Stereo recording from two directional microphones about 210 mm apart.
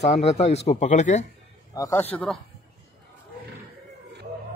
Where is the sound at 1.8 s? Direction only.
15° left (ahead or behind).